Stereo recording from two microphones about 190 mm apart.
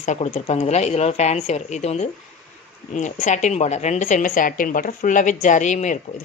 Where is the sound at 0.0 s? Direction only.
40° left (ahead or behind).